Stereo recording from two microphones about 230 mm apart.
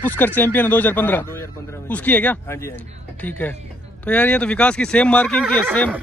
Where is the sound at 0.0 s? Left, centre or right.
Centre.